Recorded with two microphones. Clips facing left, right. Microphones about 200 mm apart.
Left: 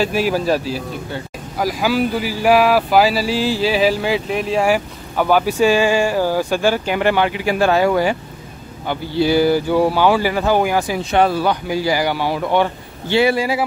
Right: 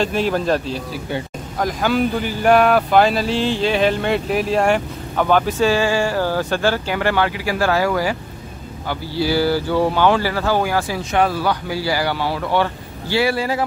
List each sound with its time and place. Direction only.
0.0 s speech: 5° left (ahead or behind)
11.1 s speech: 30° left (ahead or behind); by 13.7 s 10° left (ahead or behind)